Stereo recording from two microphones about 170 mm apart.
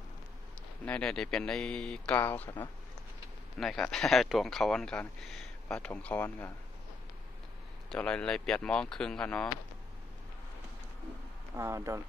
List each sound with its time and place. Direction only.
0.8 s speech: 5° left (ahead or behind)
3.5 s speech: centre (ahead or behind)
7.9 s speech: 5° left (ahead or behind)
11.5 s speech: 15° right (ahead or behind)